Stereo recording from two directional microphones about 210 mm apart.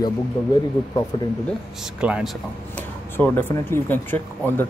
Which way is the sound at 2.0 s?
5° right (ahead or behind).